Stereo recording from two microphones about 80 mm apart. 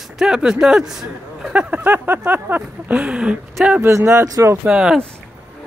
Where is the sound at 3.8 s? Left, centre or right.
Right.